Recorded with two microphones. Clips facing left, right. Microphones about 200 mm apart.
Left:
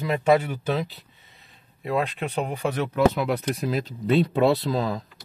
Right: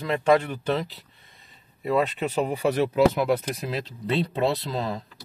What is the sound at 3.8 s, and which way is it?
Speech, 50° left (ahead or behind).